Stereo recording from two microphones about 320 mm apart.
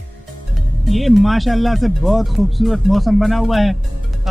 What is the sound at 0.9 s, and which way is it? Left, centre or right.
Speech, centre.